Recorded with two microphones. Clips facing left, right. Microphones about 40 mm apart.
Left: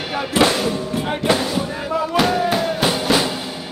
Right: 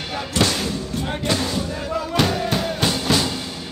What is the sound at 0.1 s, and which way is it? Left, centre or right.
Speech, left.